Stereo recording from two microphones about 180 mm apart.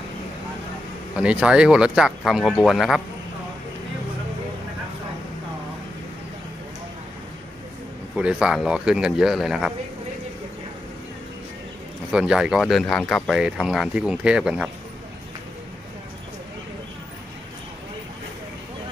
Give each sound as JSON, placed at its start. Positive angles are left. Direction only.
{"t": 1.1, "sound": "speech", "side_deg": -5}
{"t": 8.2, "sound": "speech", "side_deg": -5}
{"t": 12.1, "sound": "speech", "side_deg": -5}